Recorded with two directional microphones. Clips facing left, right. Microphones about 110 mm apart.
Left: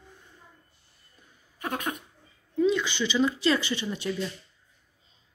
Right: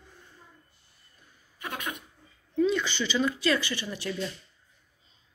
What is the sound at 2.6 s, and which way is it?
Speech, 15° left (ahead or behind).